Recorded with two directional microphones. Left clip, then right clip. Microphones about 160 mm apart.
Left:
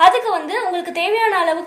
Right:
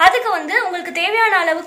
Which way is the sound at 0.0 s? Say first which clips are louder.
Even; 25° left (ahead or behind).